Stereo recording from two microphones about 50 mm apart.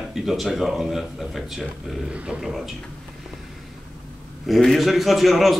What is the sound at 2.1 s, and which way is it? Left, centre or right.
Speech, right.